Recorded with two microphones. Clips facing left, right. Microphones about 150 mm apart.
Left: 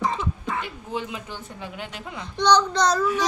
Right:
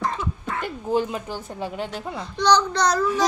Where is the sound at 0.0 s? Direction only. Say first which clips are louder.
Left 1 dB; centre (ahead or behind).